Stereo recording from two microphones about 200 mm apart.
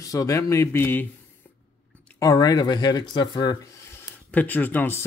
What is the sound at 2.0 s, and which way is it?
Speech, 15° left (ahead or behind).